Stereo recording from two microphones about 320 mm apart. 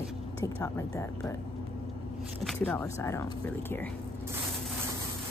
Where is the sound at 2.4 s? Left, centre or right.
Centre.